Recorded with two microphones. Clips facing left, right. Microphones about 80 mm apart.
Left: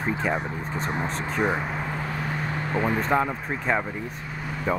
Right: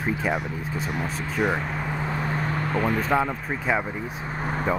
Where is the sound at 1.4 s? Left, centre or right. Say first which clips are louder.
Right 1 dB; centre.